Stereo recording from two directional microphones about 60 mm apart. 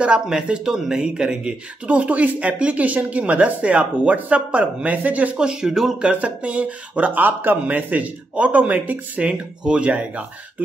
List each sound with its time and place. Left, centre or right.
0.0 s speech: centre